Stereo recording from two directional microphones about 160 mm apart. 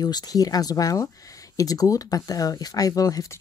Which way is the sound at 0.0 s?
25° left (ahead or behind).